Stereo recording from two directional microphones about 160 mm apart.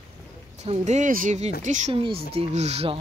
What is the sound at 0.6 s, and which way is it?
Speech, 45° right (ahead or behind).